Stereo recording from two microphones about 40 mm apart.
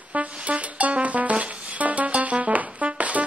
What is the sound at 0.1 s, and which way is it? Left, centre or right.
Music, right.